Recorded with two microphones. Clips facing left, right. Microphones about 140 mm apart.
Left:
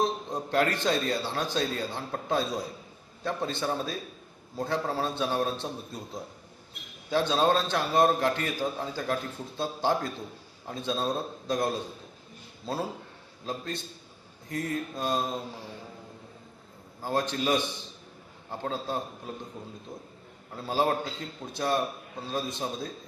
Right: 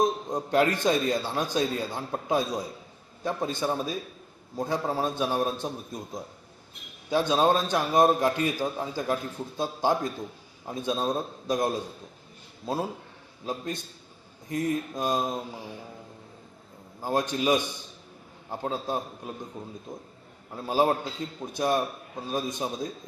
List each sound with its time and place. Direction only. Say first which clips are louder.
0.0 s a man's voice: right 3 dB; 15° right (ahead or behind)
13.5 s a man's voice: right 2 dB; 15° right (ahead or behind)
17.0 s a man's voice: right 2 dB; 15° right (ahead or behind)
19.9 s a man's voice: right 1 dB; 45° right (ahead or behind)
20.5 s a man's voice: right 3 dB; 15° right (ahead or behind)